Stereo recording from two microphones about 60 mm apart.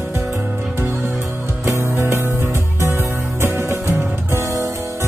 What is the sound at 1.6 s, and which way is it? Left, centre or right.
Music, right.